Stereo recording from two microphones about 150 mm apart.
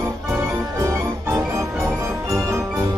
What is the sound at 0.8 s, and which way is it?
Music, 20° right (ahead or behind).